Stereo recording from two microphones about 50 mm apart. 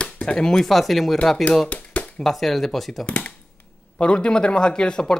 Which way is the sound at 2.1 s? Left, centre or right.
Centre.